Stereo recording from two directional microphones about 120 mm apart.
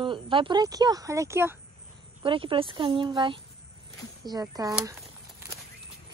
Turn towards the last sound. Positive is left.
turn(degrees=-30)  # may be behind; listen again after turning